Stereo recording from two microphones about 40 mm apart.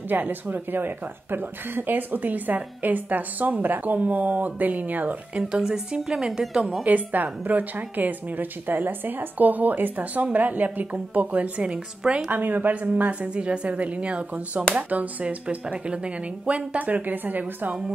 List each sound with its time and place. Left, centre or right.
0.1 s a woman's voice: right
5.4 s a woman's voice: centre
6.8 s a woman's voice: right
11.6 s speech: right
12.3 s a woman's voice: right
13.3 s speech: right
14.8 s a woman's voice: right
15.2 s a woman's voice: right